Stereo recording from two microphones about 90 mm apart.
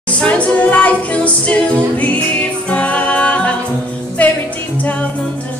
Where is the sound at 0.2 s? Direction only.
15° left (ahead or behind).